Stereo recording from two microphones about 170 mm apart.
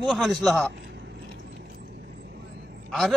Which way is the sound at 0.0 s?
Centre (ahead or behind).